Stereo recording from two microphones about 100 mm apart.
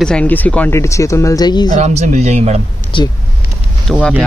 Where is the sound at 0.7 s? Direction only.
30° left (ahead or behind).